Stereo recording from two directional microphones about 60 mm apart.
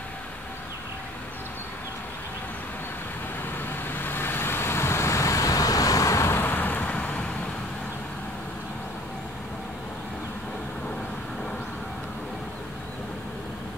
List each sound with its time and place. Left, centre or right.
3.9 s vehicle: left
6.3 s vehicle: left